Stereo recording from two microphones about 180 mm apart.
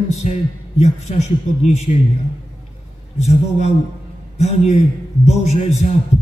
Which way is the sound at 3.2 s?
40° left (ahead or behind).